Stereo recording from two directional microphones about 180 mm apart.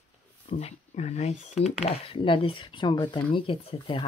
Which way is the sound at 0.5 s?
35° left (ahead or behind).